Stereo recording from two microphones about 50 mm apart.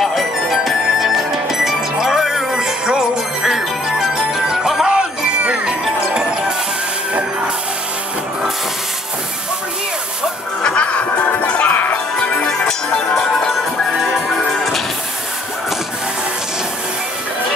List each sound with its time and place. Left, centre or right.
0.0 s music: centre
10.6 s music: left
12.2 s music: centre